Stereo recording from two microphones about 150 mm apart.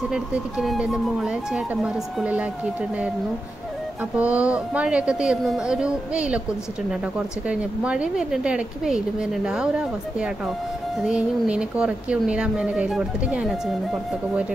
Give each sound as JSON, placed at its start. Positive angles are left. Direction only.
{"t": 0.1, "sound": "a woman's voice", "side_deg": -5}
{"t": 4.2, "sound": "a woman's voice", "side_deg": -10}